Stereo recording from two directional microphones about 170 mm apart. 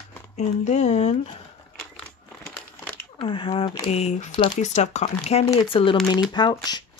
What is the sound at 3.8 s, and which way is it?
Speech, 40° left (ahead or behind).